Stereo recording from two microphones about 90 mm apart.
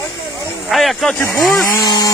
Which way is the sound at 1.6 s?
35° left (ahead or behind).